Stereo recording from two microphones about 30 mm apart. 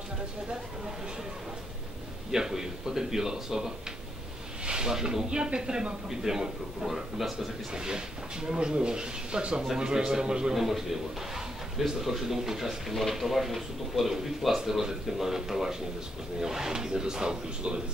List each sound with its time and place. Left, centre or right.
2.3 s speech: centre
4.6 s snake: right
4.9 s speech: centre
5.3 s speech: right
6.0 s speech: centre
7.7 s speech: right
10.5 s speech: centre; by 17.8 s right